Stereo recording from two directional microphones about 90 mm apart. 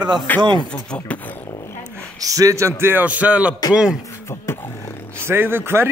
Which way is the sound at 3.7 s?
10° right (ahead or behind).